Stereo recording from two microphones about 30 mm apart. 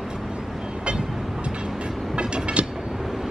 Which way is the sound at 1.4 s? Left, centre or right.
Right.